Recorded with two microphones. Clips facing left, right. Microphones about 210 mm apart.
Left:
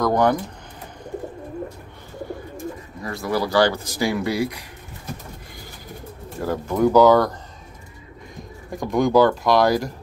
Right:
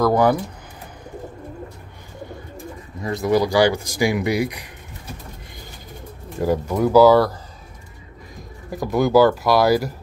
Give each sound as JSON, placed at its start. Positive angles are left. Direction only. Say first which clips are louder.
{"t": 0.0, "sound": "speech", "louder": "right 2 dB", "side_deg": -5}
{"t": 3.0, "sound": "speech", "louder": "right 6 dB", "side_deg": -20}
{"t": 6.4, "sound": "speech", "louder": "even", "side_deg": -10}
{"t": 8.6, "sound": "speech", "louder": "right 1 dB", "side_deg": -5}